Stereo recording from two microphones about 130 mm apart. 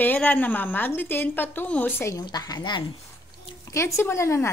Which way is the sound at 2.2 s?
30° left (ahead or behind).